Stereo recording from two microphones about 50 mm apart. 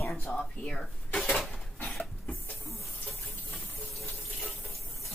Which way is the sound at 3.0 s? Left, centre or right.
Centre.